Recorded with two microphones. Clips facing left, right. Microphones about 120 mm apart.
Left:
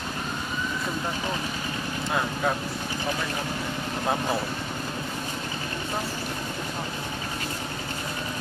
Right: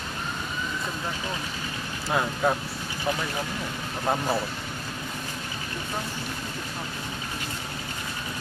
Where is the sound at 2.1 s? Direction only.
5° right (ahead or behind).